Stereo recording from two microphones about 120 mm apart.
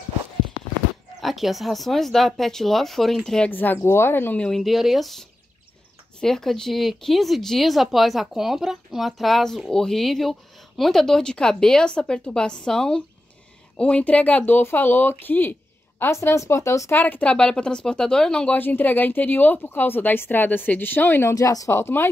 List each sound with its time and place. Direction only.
1.2 s speech: centre (ahead or behind); by 4.5 s 15° left (ahead or behind)
4.5 s speech: centre (ahead or behind)
6.2 s speech: 5° left (ahead or behind); by 17.0 s 25° left (ahead or behind)
17.0 s speech: 15° left (ahead or behind)